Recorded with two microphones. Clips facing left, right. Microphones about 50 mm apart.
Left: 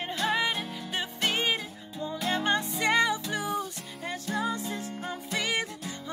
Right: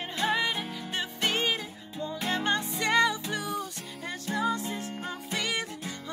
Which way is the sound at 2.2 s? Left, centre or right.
Centre.